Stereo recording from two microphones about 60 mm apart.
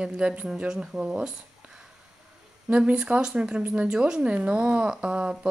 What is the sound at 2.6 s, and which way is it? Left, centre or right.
A woman's voice, right.